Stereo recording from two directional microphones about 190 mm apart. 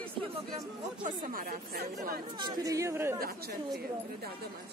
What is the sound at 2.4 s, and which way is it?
Speech, 20° right (ahead or behind).